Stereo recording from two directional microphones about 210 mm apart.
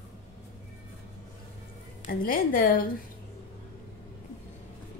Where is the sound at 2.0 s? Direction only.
40° left (ahead or behind).